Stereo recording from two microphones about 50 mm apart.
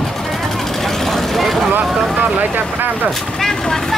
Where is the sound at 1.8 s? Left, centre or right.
Centre.